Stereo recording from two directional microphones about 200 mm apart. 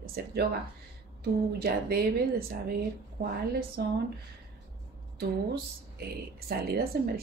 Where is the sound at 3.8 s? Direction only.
50° right (ahead or behind).